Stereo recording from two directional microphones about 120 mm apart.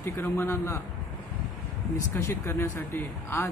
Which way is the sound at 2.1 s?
20° left (ahead or behind).